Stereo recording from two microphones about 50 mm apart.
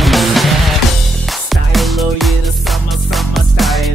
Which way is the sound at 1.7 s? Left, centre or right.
Centre.